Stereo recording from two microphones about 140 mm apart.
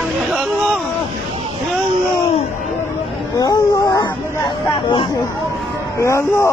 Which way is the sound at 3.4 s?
30° left (ahead or behind).